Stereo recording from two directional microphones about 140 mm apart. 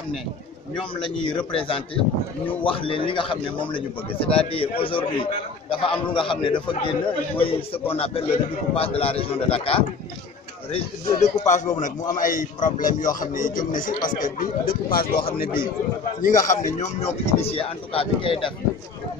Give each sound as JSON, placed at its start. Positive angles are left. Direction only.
{"t": 0.7, "sound": "a man's voice", "side_deg": 35}
{"t": 16.2, "sound": "speech", "side_deg": 65}